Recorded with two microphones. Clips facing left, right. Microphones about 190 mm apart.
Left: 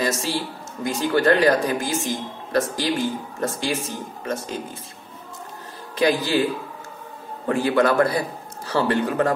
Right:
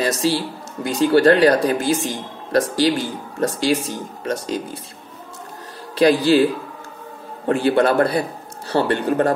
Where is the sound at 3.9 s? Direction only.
75° right (ahead or behind).